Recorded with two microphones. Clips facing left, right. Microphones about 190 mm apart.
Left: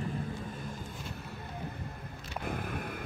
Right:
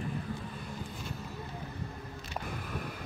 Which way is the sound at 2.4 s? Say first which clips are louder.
Left 6 dB; 55° left (ahead or behind).